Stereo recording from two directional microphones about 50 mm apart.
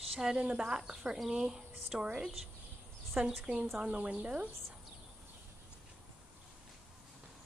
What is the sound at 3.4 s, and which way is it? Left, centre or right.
A woman's voice, centre.